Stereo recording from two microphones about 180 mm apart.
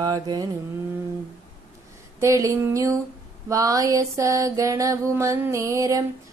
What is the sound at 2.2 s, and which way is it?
Mantra, 15° right (ahead or behind).